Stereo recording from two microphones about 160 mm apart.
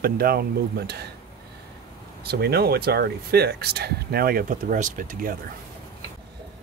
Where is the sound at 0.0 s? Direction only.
70° right (ahead or behind); by 1.0 s 90° right.